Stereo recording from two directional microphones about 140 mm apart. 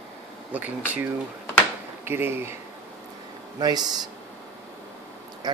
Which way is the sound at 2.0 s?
15° right (ahead or behind).